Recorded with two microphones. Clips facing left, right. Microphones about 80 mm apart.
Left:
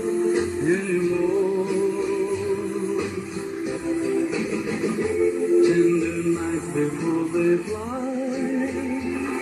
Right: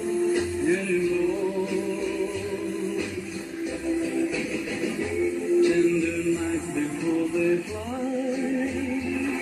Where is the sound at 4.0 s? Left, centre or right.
Left.